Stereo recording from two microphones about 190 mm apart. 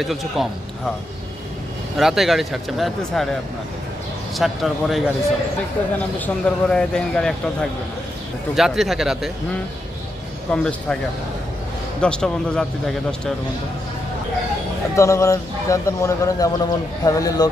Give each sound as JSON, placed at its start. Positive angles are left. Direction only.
{"t": 0.0, "sound": "speech", "side_deg": 0}
{"t": 2.0, "sound": "speech", "side_deg": 0}
{"t": 4.4, "sound": "speech", "side_deg": 0}
{"t": 8.5, "sound": "speech", "side_deg": 0}
{"t": 10.5, "sound": "speech", "side_deg": 5}
{"t": 12.0, "sound": "speech", "side_deg": 5}
{"t": 15.0, "sound": "speech", "side_deg": 15}